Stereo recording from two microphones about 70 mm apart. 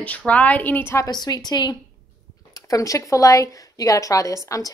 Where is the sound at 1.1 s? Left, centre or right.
Left.